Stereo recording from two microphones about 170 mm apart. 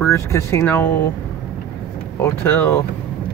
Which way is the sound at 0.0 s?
15° left (ahead or behind).